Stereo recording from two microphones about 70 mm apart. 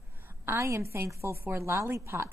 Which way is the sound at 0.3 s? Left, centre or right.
Right.